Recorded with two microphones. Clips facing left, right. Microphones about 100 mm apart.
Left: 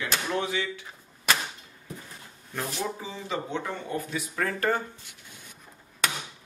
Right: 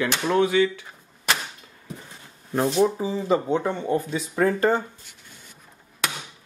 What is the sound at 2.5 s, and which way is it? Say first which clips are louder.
Speech: right 12 dB; 30° right (ahead or behind).